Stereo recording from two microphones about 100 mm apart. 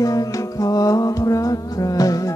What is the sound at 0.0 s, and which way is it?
Music, 35° left (ahead or behind).